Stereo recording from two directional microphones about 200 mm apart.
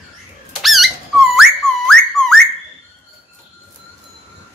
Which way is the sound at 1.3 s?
Centre (ahead or behind).